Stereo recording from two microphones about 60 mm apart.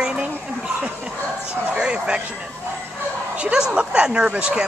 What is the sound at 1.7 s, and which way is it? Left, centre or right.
Speech, centre.